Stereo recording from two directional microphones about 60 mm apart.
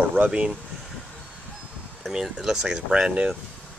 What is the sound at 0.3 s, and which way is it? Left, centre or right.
Speech, centre.